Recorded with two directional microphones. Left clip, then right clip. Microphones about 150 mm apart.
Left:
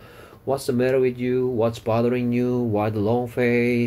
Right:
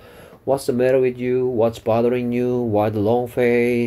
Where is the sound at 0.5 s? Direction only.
35° right (ahead or behind).